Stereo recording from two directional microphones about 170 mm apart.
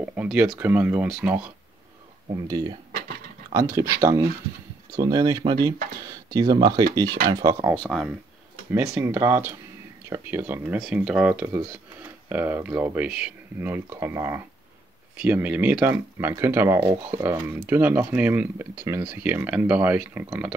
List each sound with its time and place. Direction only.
0.1 s speech: 5° right (ahead or behind)
2.2 s speech: 20° right (ahead or behind)
7.7 s speech: 5° left (ahead or behind)
8.7 s speech: 15° right (ahead or behind)